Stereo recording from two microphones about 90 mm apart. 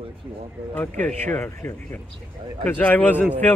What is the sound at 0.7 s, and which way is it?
Speech, 15° left (ahead or behind).